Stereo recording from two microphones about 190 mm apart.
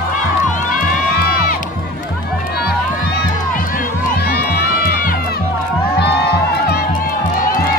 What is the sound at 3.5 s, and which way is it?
Crowd, 45° left (ahead or behind).